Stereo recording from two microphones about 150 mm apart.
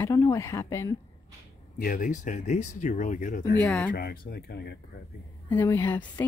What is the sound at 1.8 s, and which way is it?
Speech, 60° left (ahead or behind).